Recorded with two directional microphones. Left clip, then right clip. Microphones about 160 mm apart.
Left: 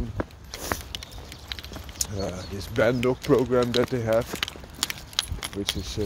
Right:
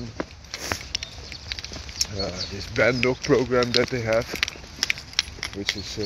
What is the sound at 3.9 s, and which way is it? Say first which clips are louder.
Speech: right 1 dB; 30° left (ahead or behind).